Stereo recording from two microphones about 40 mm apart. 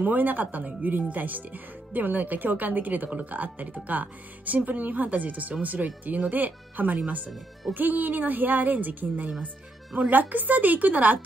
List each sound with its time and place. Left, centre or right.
0.0 s speech: right